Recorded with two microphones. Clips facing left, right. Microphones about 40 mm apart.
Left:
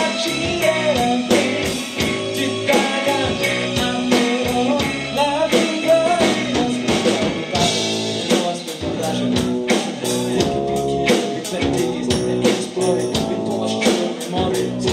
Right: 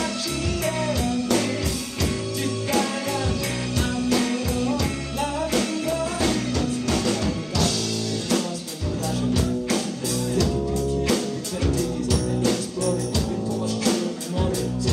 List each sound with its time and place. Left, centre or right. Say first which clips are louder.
0.7 s music: left 9 dB; left
2.7 s music: left 8 dB; left
9.2 s music: left 4 dB; left
11.6 s music: left 6 dB; left